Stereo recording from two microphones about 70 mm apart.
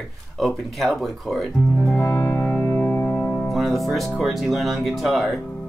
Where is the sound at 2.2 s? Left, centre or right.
Centre.